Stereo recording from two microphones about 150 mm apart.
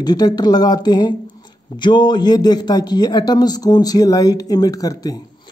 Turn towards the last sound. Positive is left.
turn(degrees=25)  # may be behind; listen again after turning